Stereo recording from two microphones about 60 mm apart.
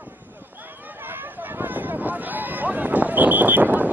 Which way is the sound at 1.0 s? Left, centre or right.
Right.